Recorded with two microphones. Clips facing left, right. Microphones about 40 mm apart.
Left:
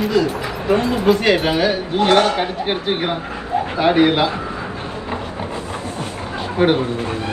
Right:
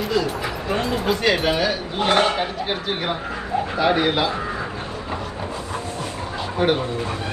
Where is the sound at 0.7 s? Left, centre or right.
Centre.